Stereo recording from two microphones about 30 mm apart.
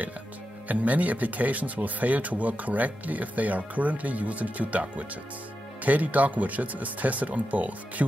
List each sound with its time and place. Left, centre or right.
0.7 s speech: right